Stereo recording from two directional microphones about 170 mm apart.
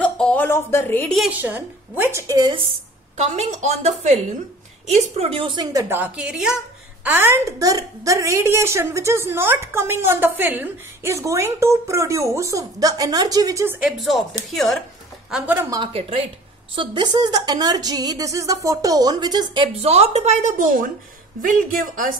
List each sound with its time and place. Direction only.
0.0 s a sound: 5° left (ahead or behind)
1.1 s a woman's voice: 5° right (ahead or behind); by 2.6 s 25° right (ahead or behind)
3.2 s a woman's voice: 45° right (ahead or behind); by 13.7 s 20° right (ahead or behind)
13.7 s speech: 5° right (ahead or behind)
15.3 s a woman's voice: 10° right (ahead or behind)
15.7 s a woman's voice: 30° right (ahead or behind); by 22.1 s 55° right (ahead or behind)